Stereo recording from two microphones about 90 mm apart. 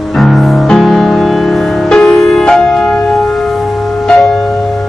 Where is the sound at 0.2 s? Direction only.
Centre (ahead or behind).